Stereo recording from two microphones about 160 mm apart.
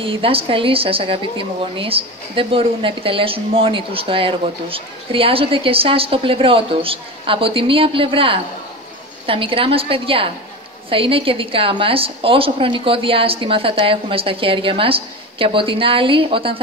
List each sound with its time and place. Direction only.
0.0 s a woman's voice: 35° right (ahead or behind)